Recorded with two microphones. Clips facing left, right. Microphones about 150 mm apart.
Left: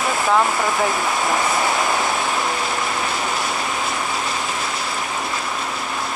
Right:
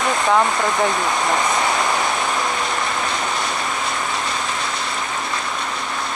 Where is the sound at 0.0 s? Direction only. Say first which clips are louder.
Right 1 dB; 5° left (ahead or behind).